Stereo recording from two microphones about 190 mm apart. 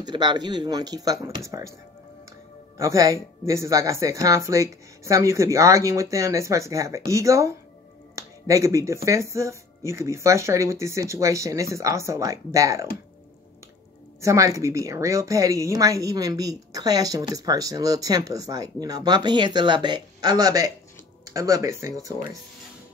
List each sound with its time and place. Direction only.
0.0 s a woman's voice: 25° right (ahead or behind)
2.8 s speech: 15° right (ahead or behind)
14.2 s a woman's voice: 15° right (ahead or behind)